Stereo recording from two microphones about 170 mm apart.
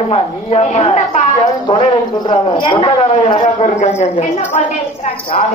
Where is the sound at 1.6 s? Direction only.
25° left (ahead or behind).